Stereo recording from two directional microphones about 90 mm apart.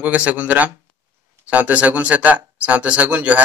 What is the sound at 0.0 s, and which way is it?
A man's voice, 15° right (ahead or behind).